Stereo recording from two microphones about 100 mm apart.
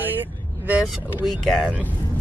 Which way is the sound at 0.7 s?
5° right (ahead or behind).